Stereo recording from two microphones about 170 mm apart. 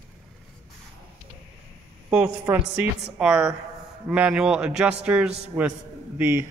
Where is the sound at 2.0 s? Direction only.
10° right (ahead or behind).